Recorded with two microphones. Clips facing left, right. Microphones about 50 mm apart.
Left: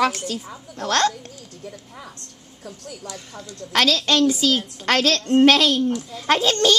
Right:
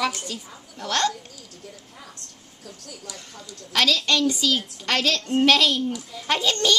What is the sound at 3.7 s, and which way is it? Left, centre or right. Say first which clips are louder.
A woman's voice: left 2 dB; left.